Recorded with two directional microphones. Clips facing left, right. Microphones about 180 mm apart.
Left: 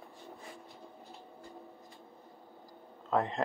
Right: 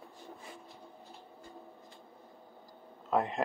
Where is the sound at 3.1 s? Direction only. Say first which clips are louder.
Even; 15° right (ahead or behind).